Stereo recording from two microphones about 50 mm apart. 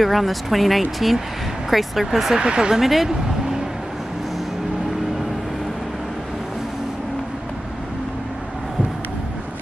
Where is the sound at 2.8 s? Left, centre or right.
Centre.